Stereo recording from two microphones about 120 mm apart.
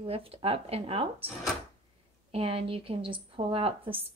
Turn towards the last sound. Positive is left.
turn(degrees=-50)  # may be behind; listen again after turning